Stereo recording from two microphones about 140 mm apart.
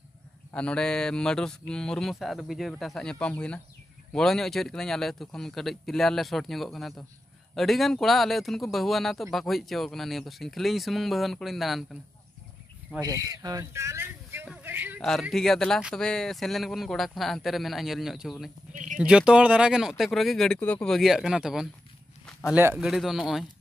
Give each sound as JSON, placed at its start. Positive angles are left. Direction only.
{"t": 0.5, "sound": "speech", "side_deg": 10}
{"t": 13.0, "sound": "speech", "side_deg": -25}
{"t": 15.0, "sound": "speech", "side_deg": 5}
{"t": 18.7, "sound": "a sound", "side_deg": -65}
{"t": 18.9, "sound": "speech", "side_deg": -5}
{"t": 22.5, "sound": "a man's voice", "side_deg": -15}
{"t": 22.8, "sound": "speech", "side_deg": 0}